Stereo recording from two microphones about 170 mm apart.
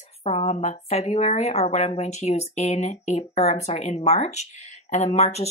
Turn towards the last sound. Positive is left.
turn(degrees=40)  # may be behind; listen again after turning